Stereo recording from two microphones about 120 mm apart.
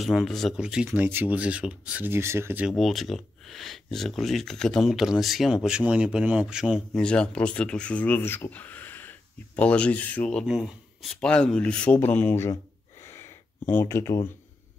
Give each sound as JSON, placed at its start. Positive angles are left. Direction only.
{"t": 0.0, "sound": "speech", "side_deg": 0}
{"t": 0.8, "sound": "speech", "side_deg": -15}
{"t": 2.7, "sound": "speech", "side_deg": 0}
{"t": 7.0, "sound": "speech", "side_deg": 10}
{"t": 10.4, "sound": "speech", "side_deg": -5}
{"t": 13.0, "sound": "a sound", "side_deg": 20}